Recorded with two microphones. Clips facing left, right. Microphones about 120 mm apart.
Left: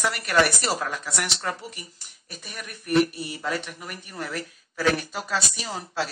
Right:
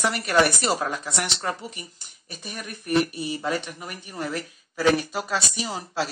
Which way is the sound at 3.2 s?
25° right (ahead or behind).